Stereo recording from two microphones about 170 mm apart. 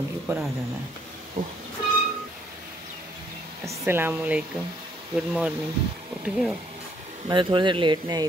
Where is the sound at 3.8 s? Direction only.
15° right (ahead or behind).